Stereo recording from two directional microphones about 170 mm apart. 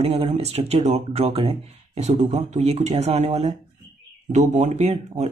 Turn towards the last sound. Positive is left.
turn(degrees=-40)  # may be behind; listen again after turning